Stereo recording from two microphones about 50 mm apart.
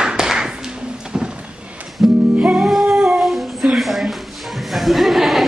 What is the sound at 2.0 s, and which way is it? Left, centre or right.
Music, centre.